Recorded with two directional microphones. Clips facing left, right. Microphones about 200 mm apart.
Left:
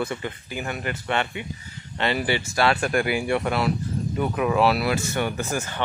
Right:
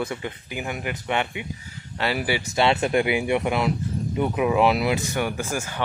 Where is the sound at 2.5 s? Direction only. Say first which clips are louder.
Right 3 dB; 25° right (ahead or behind).